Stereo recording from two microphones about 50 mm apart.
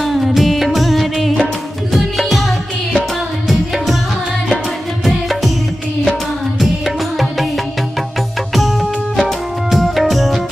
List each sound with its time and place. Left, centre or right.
0.0 s music: centre
3.4 s music: centre
5.0 s music: centre
8.5 s music: centre